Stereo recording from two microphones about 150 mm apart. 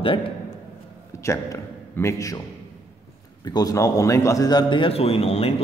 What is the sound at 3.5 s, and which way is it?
A man's voice, 25° left (ahead or behind).